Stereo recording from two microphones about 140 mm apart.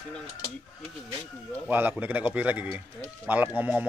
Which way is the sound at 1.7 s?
15° right (ahead or behind).